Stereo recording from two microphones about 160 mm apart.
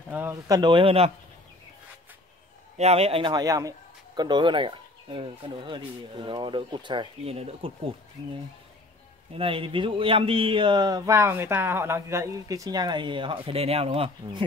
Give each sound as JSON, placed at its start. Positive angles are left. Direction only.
{"t": 0.1, "sound": "speech", "side_deg": -15}
{"t": 2.8, "sound": "a man's voice", "side_deg": -40}
{"t": 9.3, "sound": "a man's voice", "side_deg": -35}